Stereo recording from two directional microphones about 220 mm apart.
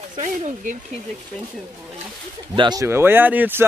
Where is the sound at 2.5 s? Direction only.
20° right (ahead or behind).